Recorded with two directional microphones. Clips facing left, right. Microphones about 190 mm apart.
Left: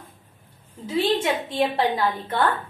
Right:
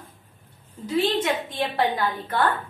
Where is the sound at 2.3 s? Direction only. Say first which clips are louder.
Right 1 dB; 25° left (ahead or behind).